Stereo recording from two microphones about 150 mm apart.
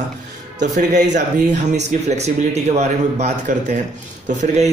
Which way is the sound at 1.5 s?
50° right (ahead or behind).